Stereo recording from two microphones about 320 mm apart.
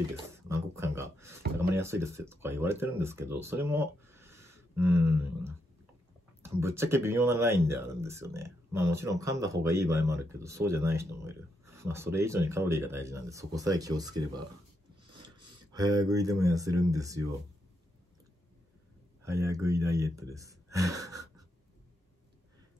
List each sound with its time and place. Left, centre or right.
0.1 s a sound: centre
1.7 s speech: centre
19.2 s speech: centre